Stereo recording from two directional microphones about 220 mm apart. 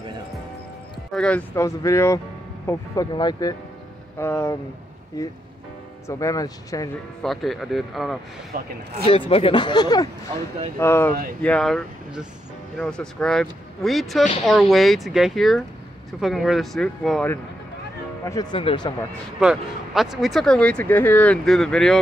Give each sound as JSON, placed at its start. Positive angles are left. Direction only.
{"t": 1.1, "sound": "speech", "side_deg": 5}
{"t": 7.2, "sound": "speech", "side_deg": 0}
{"t": 8.5, "sound": "speech", "side_deg": -40}
{"t": 9.0, "sound": "speech", "side_deg": 25}
{"t": 18.2, "sound": "speech", "side_deg": 15}
{"t": 19.4, "sound": "speech", "side_deg": 0}